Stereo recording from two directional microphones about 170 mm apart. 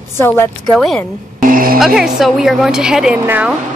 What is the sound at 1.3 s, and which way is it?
Speech, 55° right (ahead or behind).